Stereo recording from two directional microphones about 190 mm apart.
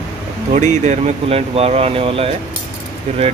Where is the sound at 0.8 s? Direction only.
35° right (ahead or behind).